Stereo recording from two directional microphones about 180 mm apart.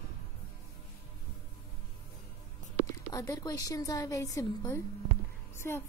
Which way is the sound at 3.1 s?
20° left (ahead or behind).